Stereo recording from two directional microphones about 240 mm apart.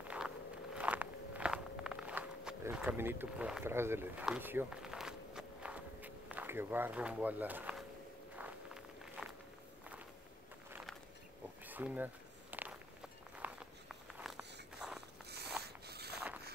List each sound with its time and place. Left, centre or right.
0.7 s walk: centre
11.6 s walk: centre
15.2 s a sound: right